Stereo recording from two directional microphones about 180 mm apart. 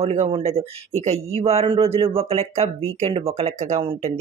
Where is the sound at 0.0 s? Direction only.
35° right (ahead or behind).